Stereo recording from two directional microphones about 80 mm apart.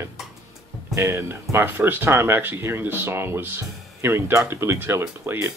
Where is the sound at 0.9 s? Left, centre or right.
Right.